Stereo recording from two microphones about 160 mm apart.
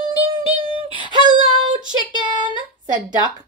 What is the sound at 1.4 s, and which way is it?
Speech, 25° right (ahead or behind).